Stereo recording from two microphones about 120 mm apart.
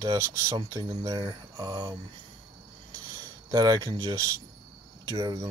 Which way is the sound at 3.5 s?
30° right (ahead or behind).